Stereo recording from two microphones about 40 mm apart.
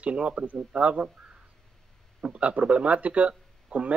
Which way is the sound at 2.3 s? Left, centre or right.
Right.